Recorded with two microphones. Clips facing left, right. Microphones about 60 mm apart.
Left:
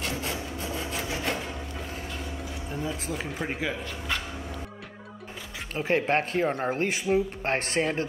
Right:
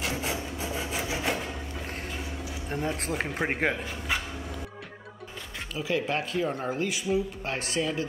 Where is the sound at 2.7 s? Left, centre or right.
Right.